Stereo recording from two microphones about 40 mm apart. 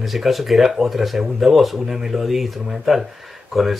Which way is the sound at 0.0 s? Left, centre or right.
Centre.